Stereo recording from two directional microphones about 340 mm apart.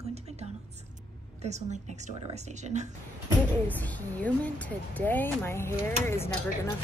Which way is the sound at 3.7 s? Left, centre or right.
Centre.